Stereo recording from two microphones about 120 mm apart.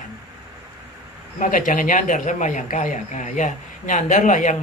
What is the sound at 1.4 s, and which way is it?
Speech, 90° left.